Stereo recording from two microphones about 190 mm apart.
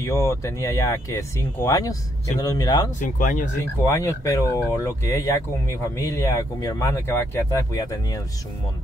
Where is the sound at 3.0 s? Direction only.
40° left (ahead or behind).